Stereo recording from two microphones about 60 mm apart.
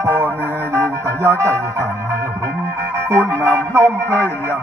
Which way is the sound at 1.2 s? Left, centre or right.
Right.